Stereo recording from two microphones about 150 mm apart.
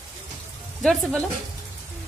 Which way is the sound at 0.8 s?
5° left (ahead or behind).